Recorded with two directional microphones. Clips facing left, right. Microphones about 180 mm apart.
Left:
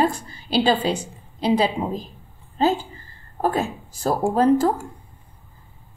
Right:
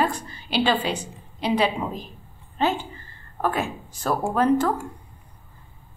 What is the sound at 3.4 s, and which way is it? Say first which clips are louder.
A woman's voice: left 3 dB; 35° left (ahead or behind).